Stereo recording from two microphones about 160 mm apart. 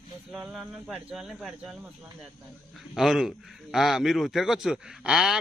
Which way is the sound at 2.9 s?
5° right (ahead or behind).